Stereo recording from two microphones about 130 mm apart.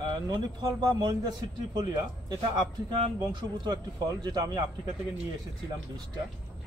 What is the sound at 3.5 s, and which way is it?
Speech, 35° right (ahead or behind).